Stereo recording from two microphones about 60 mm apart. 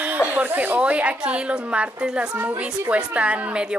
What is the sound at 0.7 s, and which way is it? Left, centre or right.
A woman's voice, right.